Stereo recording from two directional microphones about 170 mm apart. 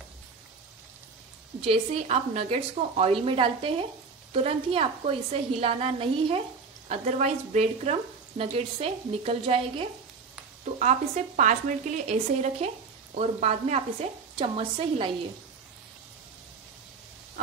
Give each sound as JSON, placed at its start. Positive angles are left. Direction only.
{"t": 1.6, "sound": "speech", "side_deg": -35}
{"t": 6.9, "sound": "speech", "side_deg": -45}